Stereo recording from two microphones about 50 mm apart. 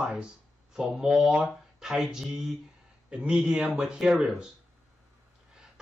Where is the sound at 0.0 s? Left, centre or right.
Centre.